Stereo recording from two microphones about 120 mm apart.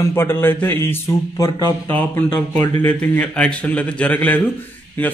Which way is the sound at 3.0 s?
10° left (ahead or behind).